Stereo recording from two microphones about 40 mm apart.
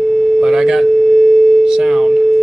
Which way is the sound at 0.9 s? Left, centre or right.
Centre.